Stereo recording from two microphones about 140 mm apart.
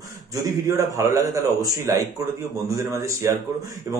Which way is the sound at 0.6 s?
25° right (ahead or behind).